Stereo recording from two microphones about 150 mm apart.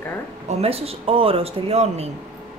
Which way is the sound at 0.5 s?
40° right (ahead or behind).